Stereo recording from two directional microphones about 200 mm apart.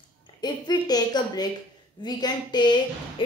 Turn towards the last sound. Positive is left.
turn(degrees=20)  # may be behind; listen again after turning